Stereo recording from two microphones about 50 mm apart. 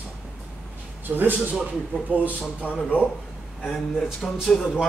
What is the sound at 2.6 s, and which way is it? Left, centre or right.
Speech, left.